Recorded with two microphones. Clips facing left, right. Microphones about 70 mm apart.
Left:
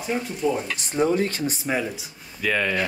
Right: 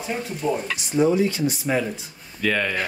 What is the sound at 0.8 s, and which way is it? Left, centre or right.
Speech, left.